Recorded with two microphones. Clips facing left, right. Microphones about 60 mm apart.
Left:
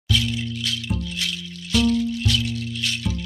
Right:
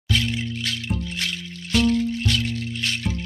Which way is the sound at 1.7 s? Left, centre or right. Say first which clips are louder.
Even; right.